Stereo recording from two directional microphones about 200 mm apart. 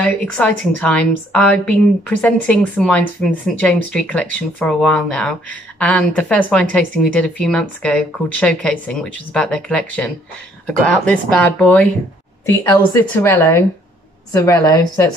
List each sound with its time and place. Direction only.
0.0 s a woman's voice: 5° left (ahead or behind)
13.1 s a woman's voice: 10° left (ahead or behind)